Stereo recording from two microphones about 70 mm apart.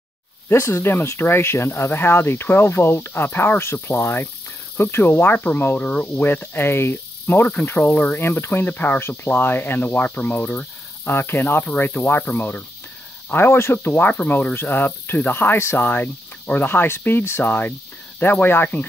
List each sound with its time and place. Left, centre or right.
0.5 s speech: left; by 6.2 s centre
6.2 s speech: left
13.9 s speech: left
15.9 s speech: left